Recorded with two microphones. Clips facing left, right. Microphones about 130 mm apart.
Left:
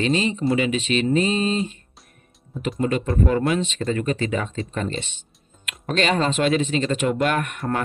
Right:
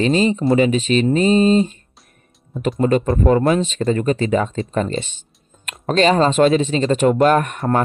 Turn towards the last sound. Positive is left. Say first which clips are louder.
# right 7 dB
turn(degrees=-35)  # may be behind; listen again after turning